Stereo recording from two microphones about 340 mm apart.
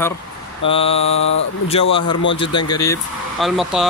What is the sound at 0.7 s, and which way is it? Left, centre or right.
Speech, centre.